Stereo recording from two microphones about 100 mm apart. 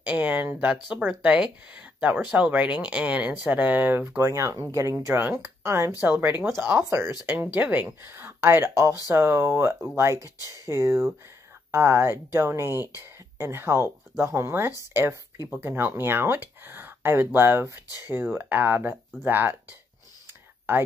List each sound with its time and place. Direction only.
0.0 s speech: 15° right (ahead or behind)
0.7 s speech: 10° right (ahead or behind)
4.2 s speech: 30° right (ahead or behind)
6.8 s speech: 30° right (ahead or behind)
7.2 s speech: 15° right (ahead or behind)
17.8 s speech: 40° left (ahead or behind)
18.1 s speech: 20° right (ahead or behind)